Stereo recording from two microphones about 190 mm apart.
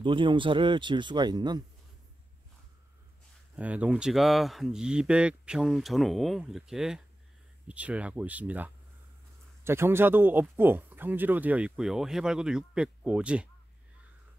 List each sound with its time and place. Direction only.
0.0 s speech: 25° right (ahead or behind)
3.5 s speech: 5° right (ahead or behind)